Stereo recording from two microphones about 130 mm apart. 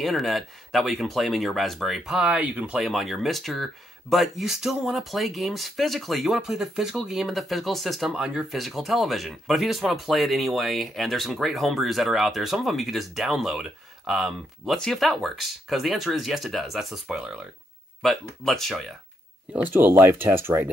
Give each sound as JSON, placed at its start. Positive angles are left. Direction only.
{"t": 0.0, "sound": "speech", "side_deg": 0}
{"t": 19.5, "sound": "speech", "side_deg": -15}